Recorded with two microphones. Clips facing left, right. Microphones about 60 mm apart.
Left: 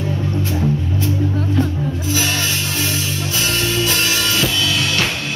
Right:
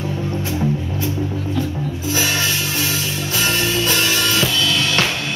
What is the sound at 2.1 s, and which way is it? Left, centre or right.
Music, centre.